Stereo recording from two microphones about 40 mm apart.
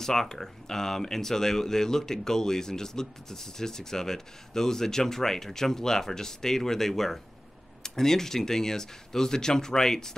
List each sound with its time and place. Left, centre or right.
0.0 s speech: centre